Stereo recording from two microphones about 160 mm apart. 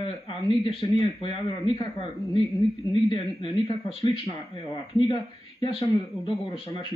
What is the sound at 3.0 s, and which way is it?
Speech, 30° left (ahead or behind).